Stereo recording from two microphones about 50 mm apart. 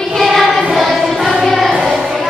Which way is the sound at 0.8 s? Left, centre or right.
Centre.